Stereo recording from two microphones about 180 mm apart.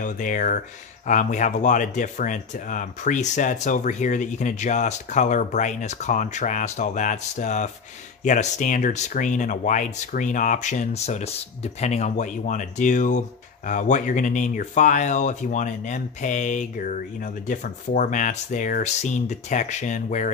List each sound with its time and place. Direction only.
0.0 s speech: 45° left (ahead or behind)